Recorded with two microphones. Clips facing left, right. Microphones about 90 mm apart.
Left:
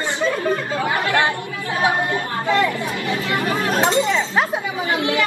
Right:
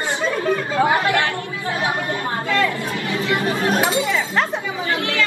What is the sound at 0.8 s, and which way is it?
Speech, 25° right (ahead or behind).